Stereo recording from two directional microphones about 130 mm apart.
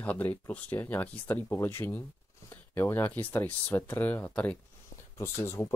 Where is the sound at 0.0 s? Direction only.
10° left (ahead or behind).